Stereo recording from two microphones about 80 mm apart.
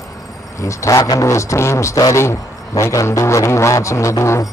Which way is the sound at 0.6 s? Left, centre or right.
Left.